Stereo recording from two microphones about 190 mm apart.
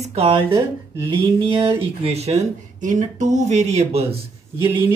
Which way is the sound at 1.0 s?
25° right (ahead or behind).